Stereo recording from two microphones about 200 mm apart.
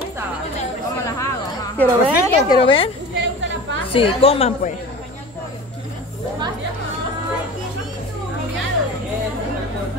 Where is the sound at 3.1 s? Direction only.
65° right (ahead or behind).